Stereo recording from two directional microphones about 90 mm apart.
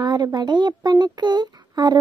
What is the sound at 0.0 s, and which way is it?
A child's voice, 50° right (ahead or behind).